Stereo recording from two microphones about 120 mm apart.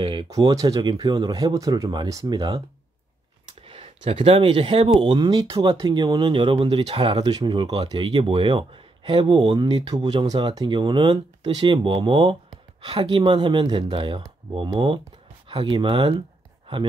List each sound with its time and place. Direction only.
0.0 s a sound: 40° right (ahead or behind)
0.3 s speech: 30° right (ahead or behind)
3.6 s speech: 55° right (ahead or behind)
7.2 s speech: 40° right (ahead or behind)
7.6 s speech: 50° right (ahead or behind)